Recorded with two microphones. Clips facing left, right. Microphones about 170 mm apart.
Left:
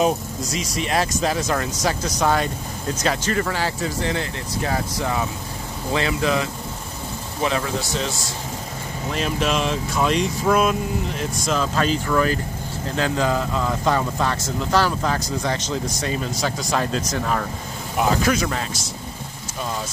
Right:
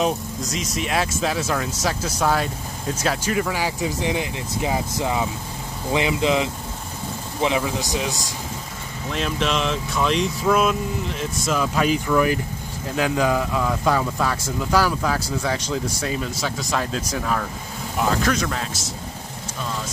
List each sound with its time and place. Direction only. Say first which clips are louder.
0.0 s speech: left 2 dB; centre (ahead or behind); by 8.3 s 15° right (ahead or behind)
9.1 s speech: left 1 dB; 5° left (ahead or behind)
17.9 s speech: left 2 dB; 5° left (ahead or behind)